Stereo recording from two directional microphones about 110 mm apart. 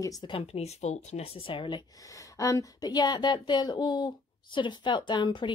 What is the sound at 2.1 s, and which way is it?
A woman's voice, 30° left (ahead or behind).